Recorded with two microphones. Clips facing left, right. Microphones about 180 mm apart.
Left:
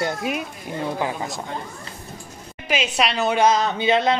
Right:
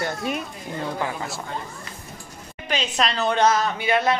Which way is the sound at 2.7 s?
10° left (ahead or behind).